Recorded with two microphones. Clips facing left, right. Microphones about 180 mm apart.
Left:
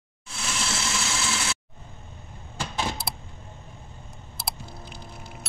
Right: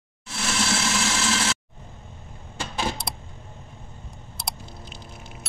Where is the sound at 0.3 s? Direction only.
75° right (ahead or behind).